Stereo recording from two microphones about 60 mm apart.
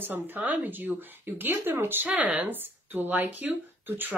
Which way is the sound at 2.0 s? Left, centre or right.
Right.